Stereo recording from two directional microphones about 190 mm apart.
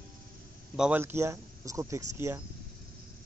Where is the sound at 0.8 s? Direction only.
10° right (ahead or behind).